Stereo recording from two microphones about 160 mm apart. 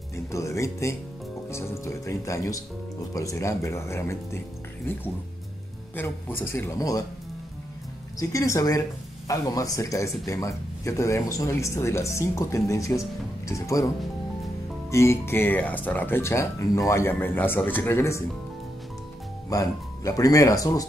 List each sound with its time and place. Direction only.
0.1 s speech: 20° left (ahead or behind)
5.9 s speech: 15° left (ahead or behind)
8.2 s speech: 20° left (ahead or behind)
14.9 s speech: 15° left (ahead or behind)
19.5 s speech: 20° left (ahead or behind)